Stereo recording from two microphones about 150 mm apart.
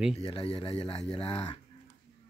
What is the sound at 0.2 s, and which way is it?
Speech, 40° left (ahead or behind).